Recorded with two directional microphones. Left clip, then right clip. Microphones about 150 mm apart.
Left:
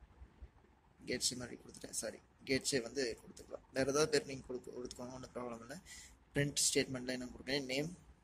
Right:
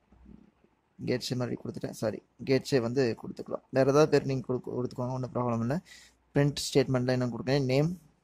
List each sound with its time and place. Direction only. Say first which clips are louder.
1.0 s speech: right 8 dB; 50° right (ahead or behind)